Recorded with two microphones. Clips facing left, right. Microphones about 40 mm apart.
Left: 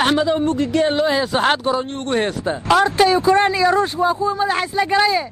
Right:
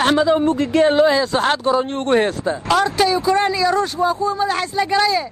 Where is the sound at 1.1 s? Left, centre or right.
Left.